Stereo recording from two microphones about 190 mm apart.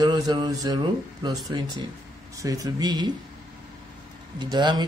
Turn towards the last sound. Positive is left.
turn(degrees=-25)  # may be behind; listen again after turning